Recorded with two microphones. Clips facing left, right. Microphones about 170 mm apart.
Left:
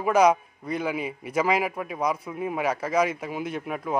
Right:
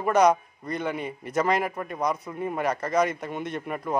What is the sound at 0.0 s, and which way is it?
A man's voice, 5° left (ahead or behind).